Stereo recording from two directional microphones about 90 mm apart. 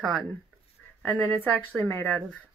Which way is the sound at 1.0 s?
15° left (ahead or behind).